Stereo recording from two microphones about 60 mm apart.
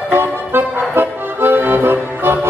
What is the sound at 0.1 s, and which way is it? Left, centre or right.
Music, right.